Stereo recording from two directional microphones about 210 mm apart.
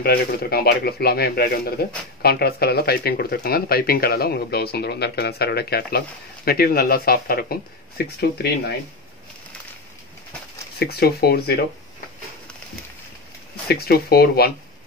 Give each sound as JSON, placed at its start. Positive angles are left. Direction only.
{"t": 0.0, "sound": "speech", "side_deg": 50}
{"t": 10.8, "sound": "speech", "side_deg": 50}
{"t": 13.7, "sound": "speech", "side_deg": 50}